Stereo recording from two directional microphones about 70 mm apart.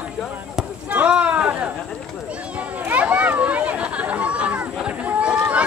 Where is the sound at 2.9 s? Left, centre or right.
Right.